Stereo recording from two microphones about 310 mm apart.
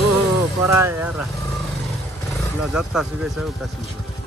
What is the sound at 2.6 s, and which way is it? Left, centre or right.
Speech, centre.